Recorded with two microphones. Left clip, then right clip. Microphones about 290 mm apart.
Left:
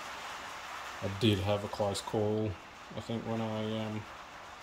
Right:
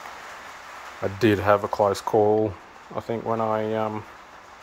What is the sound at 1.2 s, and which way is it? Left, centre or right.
Speech, right.